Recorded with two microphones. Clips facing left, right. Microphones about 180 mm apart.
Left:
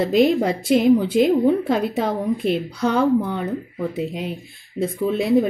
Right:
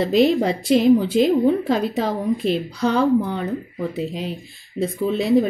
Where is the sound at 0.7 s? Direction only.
10° left (ahead or behind).